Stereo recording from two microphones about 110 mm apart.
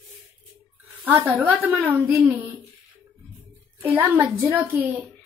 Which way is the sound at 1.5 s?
15° right (ahead or behind).